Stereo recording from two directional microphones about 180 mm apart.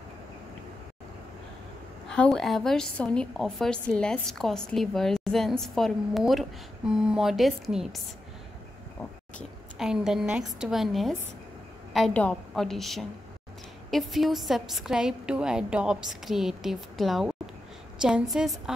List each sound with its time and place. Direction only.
2.0 s a woman's voice: 5° left (ahead or behind)
9.8 s a woman's voice: centre (ahead or behind)